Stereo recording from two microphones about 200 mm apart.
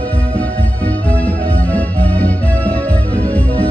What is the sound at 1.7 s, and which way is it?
Music, 5° left (ahead or behind).